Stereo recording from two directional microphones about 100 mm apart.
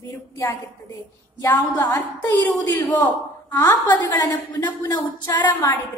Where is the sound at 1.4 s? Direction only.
35° left (ahead or behind).